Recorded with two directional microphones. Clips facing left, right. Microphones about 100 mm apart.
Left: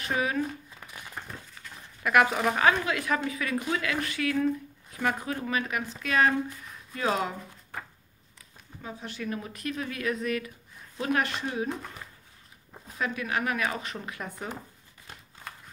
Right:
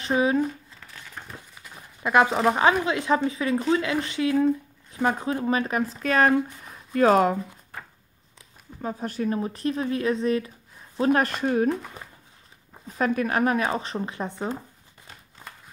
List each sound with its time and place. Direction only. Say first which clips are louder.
0.0 s speech: right 6 dB; 25° right (ahead or behind)
1.2 s a sound: even; 5° left (ahead or behind)
2.0 s speech: right 4 dB; 25° right (ahead or behind); by 7.3 s 50° right (ahead or behind)
8.8 s speech: right 8 dB; 40° right (ahead or behind)
12.9 s speech: right 7 dB; 45° right (ahead or behind); by 14.5 s 30° right (ahead or behind)